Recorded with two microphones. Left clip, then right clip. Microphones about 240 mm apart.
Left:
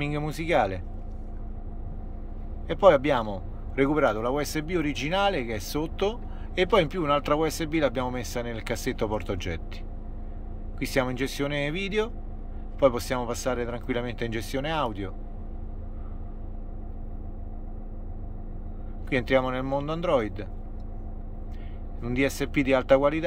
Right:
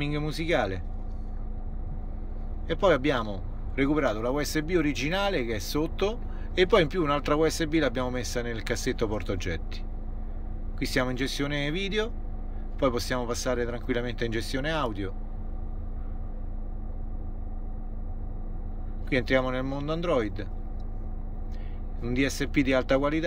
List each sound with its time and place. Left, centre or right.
0.0 s a man's voice: centre
2.7 s a man's voice: centre
10.8 s a man's voice: centre
19.0 s a man's voice: centre
22.0 s a man's voice: centre